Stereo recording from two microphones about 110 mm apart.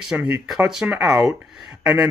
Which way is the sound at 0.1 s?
10° right (ahead or behind).